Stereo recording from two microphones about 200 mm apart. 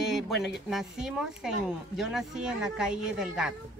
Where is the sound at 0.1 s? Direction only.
Centre (ahead or behind).